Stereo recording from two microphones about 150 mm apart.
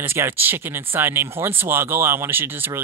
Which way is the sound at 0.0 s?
15° right (ahead or behind).